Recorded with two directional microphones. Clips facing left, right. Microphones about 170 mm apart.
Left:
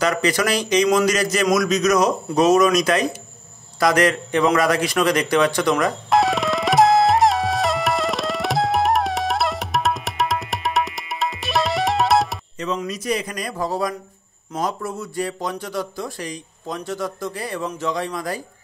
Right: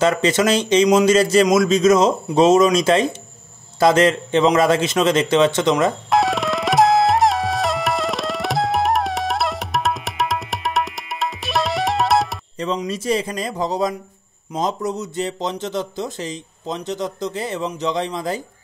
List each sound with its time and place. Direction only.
0.0 s speech: 25° right (ahead or behind)
6.0 s music: centre (ahead or behind)
12.8 s speech: 30° right (ahead or behind)